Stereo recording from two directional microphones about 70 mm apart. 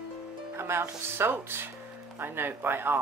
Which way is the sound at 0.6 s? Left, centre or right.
Right.